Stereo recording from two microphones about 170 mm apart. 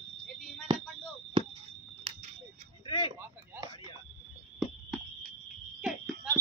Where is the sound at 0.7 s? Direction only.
25° right (ahead or behind).